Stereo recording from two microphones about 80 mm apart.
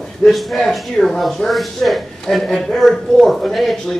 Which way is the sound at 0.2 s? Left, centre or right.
Centre.